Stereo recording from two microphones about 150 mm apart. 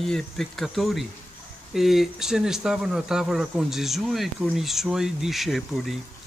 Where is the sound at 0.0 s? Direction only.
Centre (ahead or behind).